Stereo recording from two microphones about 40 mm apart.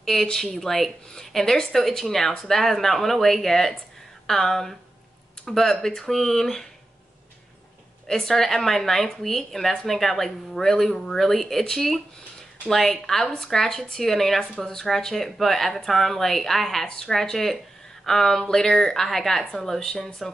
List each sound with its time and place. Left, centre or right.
0.0 s speech: centre
8.1 s a woman's voice: centre
18.9 s speech: centre